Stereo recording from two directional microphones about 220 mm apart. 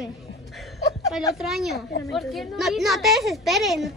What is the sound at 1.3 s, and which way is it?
A woman's voice, centre (ahead or behind).